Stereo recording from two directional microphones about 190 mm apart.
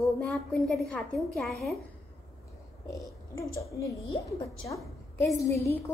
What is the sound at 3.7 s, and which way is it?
A woman's voice, 15° left (ahead or behind).